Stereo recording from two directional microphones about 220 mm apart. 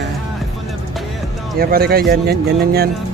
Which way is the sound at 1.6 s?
45° right (ahead or behind).